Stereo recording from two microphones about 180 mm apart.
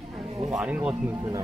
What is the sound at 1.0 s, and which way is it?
Speech, 15° right (ahead or behind).